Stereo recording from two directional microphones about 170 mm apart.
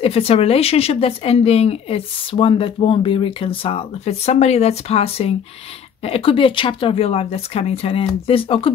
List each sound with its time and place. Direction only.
0.0 s speech: 35° left (ahead or behind)